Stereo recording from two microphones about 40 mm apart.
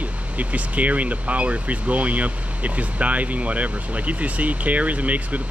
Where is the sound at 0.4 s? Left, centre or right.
Right.